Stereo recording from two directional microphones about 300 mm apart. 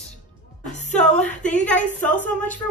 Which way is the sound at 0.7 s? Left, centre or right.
Left.